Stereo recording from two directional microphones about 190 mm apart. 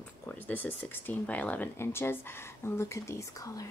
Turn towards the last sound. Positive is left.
turn(degrees=20)  # may be behind; listen again after turning